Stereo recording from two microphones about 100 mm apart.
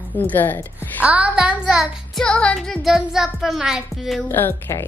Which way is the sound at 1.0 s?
15° right (ahead or behind).